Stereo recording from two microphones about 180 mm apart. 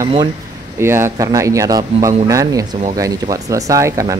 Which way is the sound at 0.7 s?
15° right (ahead or behind).